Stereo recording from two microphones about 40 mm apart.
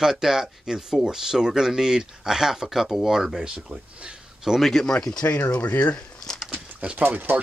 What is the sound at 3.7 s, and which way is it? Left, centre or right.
Speech, right.